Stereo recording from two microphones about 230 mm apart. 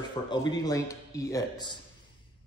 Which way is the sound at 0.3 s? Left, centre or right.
Centre.